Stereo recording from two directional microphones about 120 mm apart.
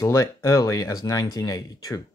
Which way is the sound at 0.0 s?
25° left (ahead or behind).